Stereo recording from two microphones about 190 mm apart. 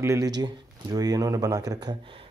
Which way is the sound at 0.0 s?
15° right (ahead or behind).